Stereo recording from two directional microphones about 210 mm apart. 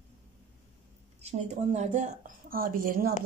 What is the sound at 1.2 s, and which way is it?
A woman's voice, 30° right (ahead or behind).